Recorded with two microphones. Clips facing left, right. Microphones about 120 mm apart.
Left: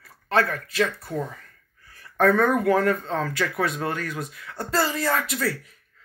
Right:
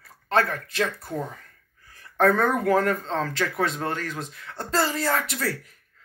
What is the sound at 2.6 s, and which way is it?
Speech, 35° right (ahead or behind).